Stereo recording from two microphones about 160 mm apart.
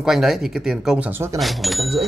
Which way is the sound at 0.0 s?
5° right (ahead or behind).